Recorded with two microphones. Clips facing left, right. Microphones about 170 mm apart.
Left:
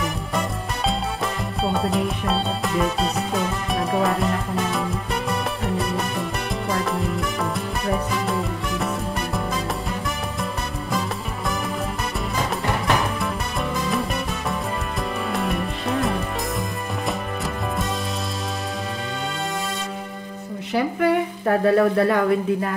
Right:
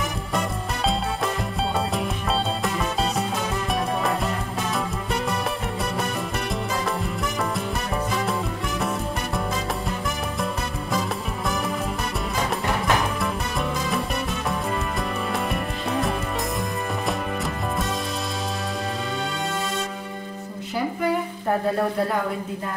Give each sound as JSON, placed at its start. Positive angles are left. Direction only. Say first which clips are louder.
{"t": 0.8, "sound": "music", "louder": "even", "side_deg": 0}
{"t": 8.1, "sound": "music", "louder": "left 1 dB", "side_deg": 0}
{"t": 10.4, "sound": "music", "louder": "even", "side_deg": 0}
{"t": 13.2, "sound": "music", "louder": "even", "side_deg": 0}
{"t": 15.3, "sound": "music", "louder": "left 2 dB", "side_deg": 0}
{"t": 20.7, "sound": "a sound", "louder": "left 4 dB", "side_deg": 75}